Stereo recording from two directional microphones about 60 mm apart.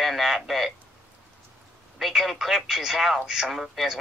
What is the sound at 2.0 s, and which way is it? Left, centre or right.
Speech, centre.